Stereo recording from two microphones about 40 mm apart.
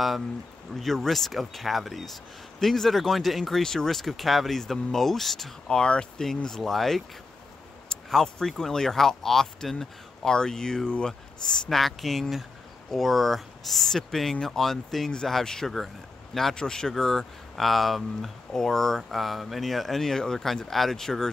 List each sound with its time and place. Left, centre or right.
0.7 s speech: centre
3.6 s speech: centre
5.7 s speech: left
6.2 s speech: centre
8.1 s speech: centre; by 11.1 s left
11.4 s speech: centre